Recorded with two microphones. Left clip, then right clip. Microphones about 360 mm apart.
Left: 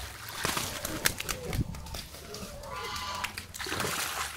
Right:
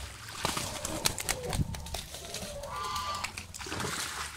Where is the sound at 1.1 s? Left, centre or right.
Right.